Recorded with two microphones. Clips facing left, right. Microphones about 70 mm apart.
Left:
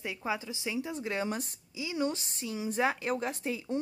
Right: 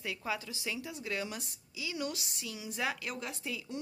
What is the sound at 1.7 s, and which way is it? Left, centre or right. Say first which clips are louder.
A woman's voice: left 6 dB; left.